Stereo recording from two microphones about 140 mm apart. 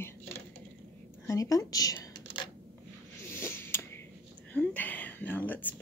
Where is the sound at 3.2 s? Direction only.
15° left (ahead or behind).